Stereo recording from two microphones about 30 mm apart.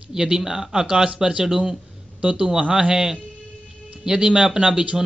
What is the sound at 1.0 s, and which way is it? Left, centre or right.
A man's voice, right.